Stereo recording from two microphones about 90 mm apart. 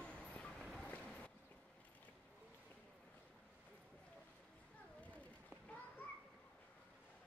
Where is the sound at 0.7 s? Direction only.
15° left (ahead or behind).